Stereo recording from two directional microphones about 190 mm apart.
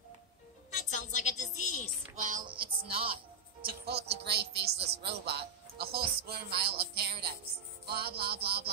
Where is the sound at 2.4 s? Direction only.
25° right (ahead or behind).